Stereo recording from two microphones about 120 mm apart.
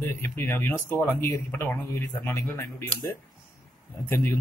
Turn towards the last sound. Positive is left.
turn(degrees=15)  # may be behind; listen again after turning